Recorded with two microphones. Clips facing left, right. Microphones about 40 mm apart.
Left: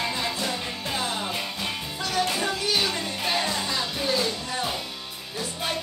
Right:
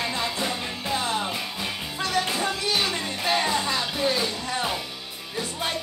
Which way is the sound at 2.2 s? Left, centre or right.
Right.